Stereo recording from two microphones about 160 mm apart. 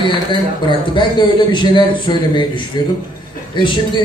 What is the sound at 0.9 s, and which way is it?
A man's voice, 30° left (ahead or behind).